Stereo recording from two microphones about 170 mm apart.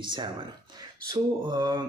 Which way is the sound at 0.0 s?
25° right (ahead or behind).